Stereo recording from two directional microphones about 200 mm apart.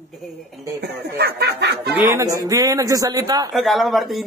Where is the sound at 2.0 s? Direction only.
15° right (ahead or behind).